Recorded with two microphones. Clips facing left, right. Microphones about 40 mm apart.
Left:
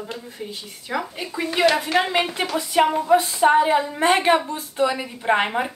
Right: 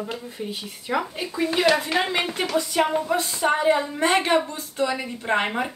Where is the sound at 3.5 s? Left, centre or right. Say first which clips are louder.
Left 3 dB; centre.